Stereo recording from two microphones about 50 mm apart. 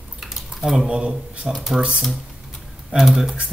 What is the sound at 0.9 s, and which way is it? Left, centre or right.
Speech, right.